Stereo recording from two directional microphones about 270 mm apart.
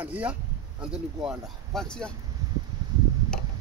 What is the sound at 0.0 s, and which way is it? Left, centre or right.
Speech, centre.